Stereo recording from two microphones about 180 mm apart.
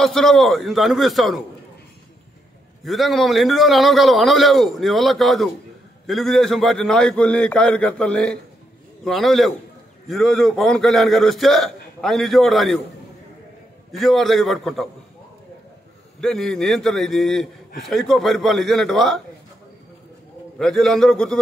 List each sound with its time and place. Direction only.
0.0 s a man's voice: centre (ahead or behind)
2.8 s a man's voice: centre (ahead or behind)
13.9 s a man's voice: centre (ahead or behind)
16.2 s a man's voice: centre (ahead or behind)
20.5 s a man's voice: centre (ahead or behind)